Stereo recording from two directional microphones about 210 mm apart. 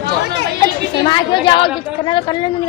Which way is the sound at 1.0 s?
20° left (ahead or behind).